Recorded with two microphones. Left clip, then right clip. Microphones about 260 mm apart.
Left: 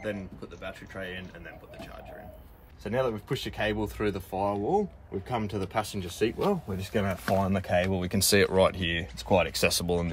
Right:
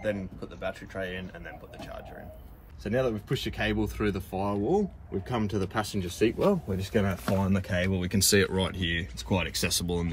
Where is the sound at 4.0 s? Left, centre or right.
Centre.